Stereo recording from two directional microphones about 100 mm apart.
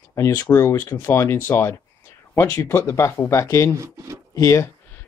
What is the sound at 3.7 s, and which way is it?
Speech, 30° right (ahead or behind).